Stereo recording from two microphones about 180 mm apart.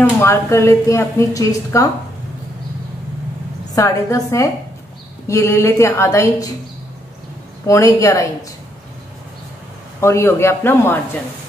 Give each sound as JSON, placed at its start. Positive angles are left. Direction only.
{"t": 0.2, "sound": "a woman's voice", "side_deg": 15}
{"t": 3.7, "sound": "a woman's voice", "side_deg": 15}
{"t": 7.6, "sound": "a woman's voice", "side_deg": 15}
{"t": 9.9, "sound": "a woman's voice", "side_deg": 15}